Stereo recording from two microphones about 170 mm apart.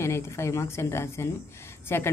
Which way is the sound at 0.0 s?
15° left (ahead or behind).